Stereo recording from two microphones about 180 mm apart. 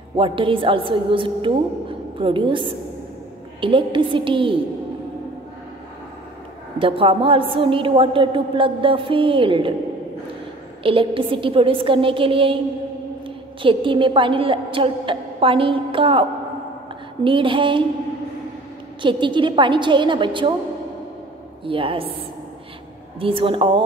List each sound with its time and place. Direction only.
0.2 s a woman's voice: 30° right (ahead or behind)
6.8 s a woman's voice: 30° right (ahead or behind)
10.8 s a woman's voice: 30° right (ahead or behind)
13.6 s a woman's voice: 30° right (ahead or behind)
19.0 s a woman's voice: 25° right (ahead or behind)
21.6 s a woman's voice: 30° right (ahead or behind)